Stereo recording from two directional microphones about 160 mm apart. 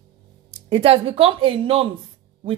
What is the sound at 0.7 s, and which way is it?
A woman's voice, 40° right (ahead or behind).